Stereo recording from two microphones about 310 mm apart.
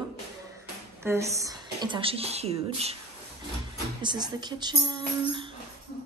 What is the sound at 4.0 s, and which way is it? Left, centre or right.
Speech, centre.